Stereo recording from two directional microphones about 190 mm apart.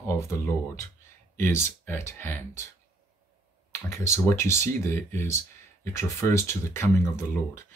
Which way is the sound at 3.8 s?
15° left (ahead or behind).